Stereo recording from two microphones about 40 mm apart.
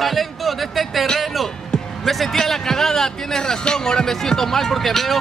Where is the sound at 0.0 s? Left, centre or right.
Centre.